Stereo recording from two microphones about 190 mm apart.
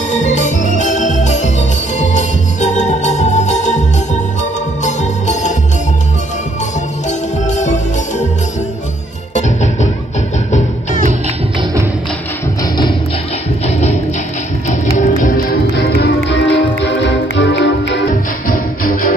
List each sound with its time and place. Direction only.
0.1 s organ: 40° left (ahead or behind)
2.0 s music: 40° left (ahead or behind)
7.1 s music: 40° left (ahead or behind)
9.3 s music: 35° left (ahead or behind)
13.7 s music: 35° left (ahead or behind)
15.9 s music: 70° left (ahead or behind)
18.1 s music: 45° left (ahead or behind)